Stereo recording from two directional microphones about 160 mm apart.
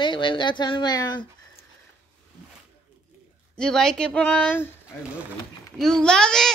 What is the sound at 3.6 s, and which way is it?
Speech, 5° left (ahead or behind).